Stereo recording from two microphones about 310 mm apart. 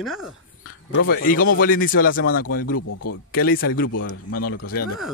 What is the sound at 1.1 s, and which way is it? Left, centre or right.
Speech, left.